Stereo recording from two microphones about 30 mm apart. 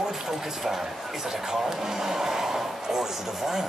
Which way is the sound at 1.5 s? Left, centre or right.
Centre.